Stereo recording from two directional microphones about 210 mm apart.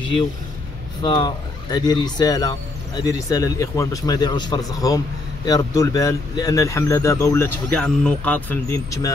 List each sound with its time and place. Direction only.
1.0 s speech: 25° left (ahead or behind)